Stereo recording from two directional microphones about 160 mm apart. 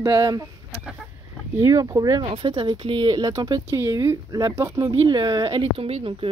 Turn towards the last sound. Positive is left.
turn(degrees=-35)  # may be behind; listen again after turning